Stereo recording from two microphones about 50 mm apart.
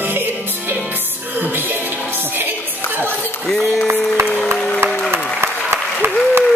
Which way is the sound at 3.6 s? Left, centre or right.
Centre.